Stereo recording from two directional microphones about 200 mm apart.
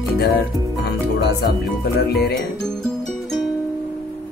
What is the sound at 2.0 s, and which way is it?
Speech, 55° left (ahead or behind).